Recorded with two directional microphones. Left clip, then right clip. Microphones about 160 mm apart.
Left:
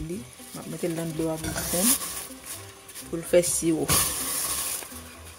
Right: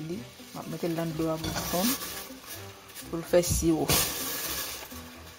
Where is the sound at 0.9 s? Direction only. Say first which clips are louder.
Right 1 dB; 15° left (ahead or behind).